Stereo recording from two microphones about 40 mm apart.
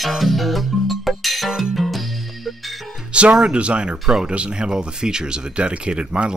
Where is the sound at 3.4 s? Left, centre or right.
Right.